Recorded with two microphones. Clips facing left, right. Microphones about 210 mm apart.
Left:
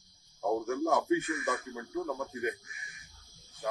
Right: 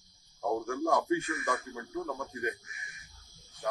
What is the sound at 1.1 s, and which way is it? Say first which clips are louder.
Speech: left 1 dB; 20° left (ahead or behind).